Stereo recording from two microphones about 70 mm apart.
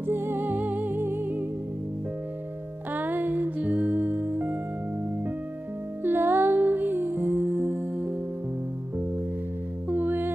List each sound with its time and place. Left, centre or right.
0.0 s music: right
2.9 s music: right
6.0 s music: right
9.8 s music: right